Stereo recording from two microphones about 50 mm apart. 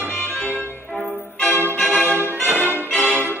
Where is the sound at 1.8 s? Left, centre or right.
Left.